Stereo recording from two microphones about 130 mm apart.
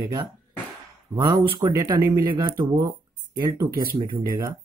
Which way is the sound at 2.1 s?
35° right (ahead or behind).